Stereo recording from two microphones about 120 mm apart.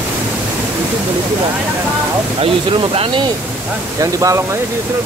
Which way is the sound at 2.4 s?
50° right (ahead or behind).